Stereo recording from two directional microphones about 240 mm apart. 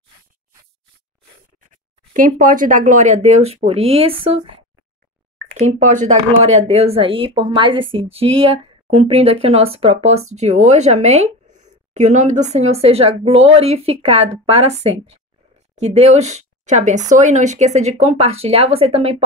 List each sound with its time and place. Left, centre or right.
1.7 s a woman's voice: right